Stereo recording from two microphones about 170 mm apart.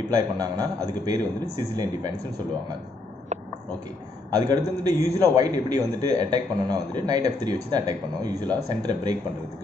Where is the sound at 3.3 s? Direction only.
40° right (ahead or behind).